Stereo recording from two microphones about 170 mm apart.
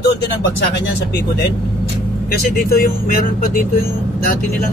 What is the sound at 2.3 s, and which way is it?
Speech, 60° left (ahead or behind).